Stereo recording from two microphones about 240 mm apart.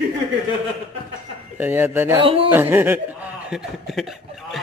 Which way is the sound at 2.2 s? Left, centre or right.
Right.